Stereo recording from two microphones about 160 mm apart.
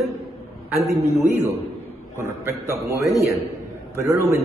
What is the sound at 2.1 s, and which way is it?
A man's voice, 15° right (ahead or behind).